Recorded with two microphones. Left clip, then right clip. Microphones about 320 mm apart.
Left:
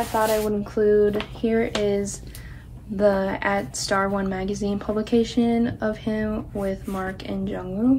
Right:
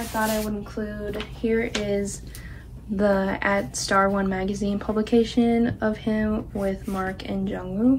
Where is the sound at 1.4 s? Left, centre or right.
Centre.